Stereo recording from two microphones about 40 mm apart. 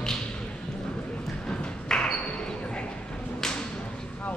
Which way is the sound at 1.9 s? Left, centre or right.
Centre.